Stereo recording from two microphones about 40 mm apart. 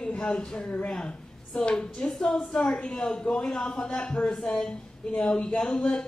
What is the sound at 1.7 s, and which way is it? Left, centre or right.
Speech, centre.